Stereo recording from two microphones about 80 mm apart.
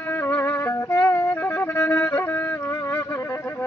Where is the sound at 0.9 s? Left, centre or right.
Left.